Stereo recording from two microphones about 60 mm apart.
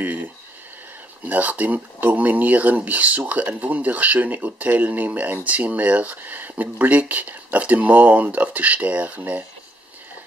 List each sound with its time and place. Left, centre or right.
1.2 s speech: right